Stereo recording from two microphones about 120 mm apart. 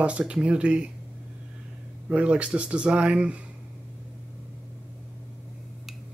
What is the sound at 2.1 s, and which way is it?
Speech, 10° right (ahead or behind).